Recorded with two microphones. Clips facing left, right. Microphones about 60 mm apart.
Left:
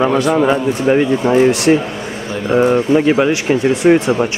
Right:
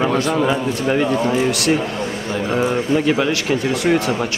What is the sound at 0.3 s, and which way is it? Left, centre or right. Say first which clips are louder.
Speech: left 5 dB; centre.